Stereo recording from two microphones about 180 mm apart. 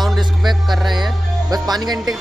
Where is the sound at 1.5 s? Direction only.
20° right (ahead or behind).